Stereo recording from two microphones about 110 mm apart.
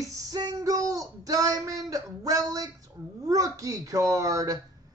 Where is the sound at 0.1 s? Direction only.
35° right (ahead or behind).